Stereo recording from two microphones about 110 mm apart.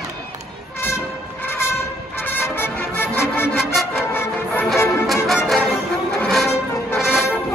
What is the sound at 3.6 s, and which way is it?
Music, centre (ahead or behind).